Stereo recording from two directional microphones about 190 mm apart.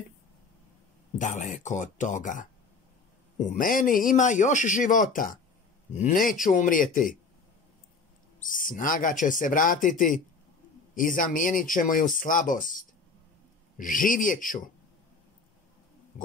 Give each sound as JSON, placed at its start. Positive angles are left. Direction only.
{"t": 1.1, "sound": "speech", "side_deg": 40}
{"t": 8.4, "sound": "speech", "side_deg": 45}